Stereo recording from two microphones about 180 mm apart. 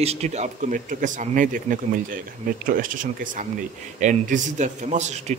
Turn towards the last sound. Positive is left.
turn(degrees=-40)  # may be behind; listen again after turning